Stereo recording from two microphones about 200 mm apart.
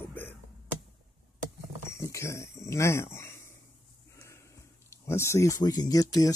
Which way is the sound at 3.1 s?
10° left (ahead or behind).